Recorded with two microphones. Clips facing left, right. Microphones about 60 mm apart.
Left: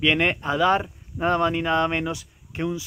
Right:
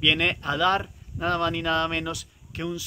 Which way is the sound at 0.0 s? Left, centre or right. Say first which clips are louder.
Left 3 dB; left.